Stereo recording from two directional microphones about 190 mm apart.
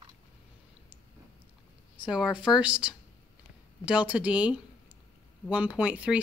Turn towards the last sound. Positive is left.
turn(degrees=-5)  # may be behind; listen again after turning